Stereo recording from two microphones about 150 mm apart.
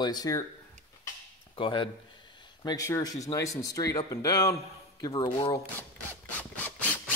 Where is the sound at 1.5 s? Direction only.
35° left (ahead or behind).